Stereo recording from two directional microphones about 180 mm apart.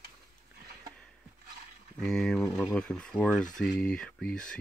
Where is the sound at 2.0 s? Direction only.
5° left (ahead or behind).